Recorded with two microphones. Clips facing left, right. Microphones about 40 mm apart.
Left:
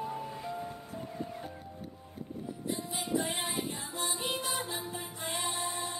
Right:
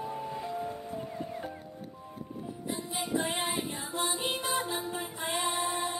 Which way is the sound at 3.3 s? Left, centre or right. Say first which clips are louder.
Right 2 dB; right.